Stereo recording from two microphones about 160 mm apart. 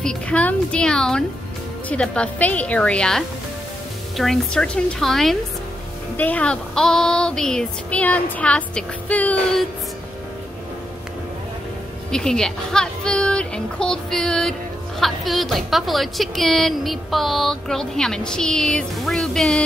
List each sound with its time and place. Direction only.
0.0 s a woman's voice: 5° left (ahead or behind)
1.9 s female singing: 10° left (ahead or behind)
4.2 s a woman's voice: 5° left (ahead or behind)
6.1 s female singing: 10° left (ahead or behind)
12.1 s a woman's voice: 5° left (ahead or behind)